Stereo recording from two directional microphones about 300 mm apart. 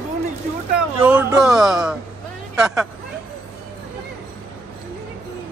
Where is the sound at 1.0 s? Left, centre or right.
Centre.